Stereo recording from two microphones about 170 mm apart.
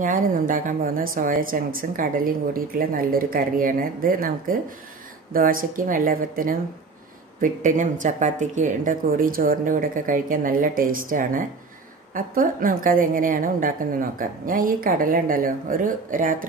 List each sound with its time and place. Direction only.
0.0 s speech: 55° right (ahead or behind)